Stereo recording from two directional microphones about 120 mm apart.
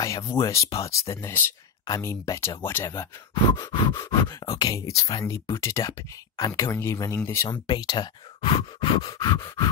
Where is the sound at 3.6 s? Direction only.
40° left (ahead or behind); by 7.5 s 20° left (ahead or behind).